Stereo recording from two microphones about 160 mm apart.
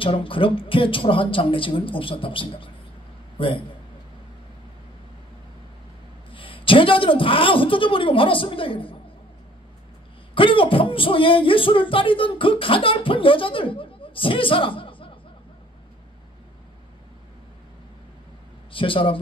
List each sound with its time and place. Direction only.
0.0 s a man's voice: 35° left (ahead or behind)
6.3 s speech: 35° left (ahead or behind)
10.3 s speech: 35° left (ahead or behind)
18.7 s speech: 35° left (ahead or behind)